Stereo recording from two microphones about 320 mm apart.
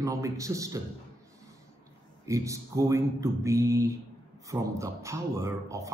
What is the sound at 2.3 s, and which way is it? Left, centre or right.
A man's voice, centre.